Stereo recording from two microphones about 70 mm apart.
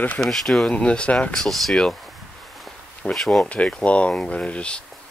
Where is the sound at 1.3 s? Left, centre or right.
Centre.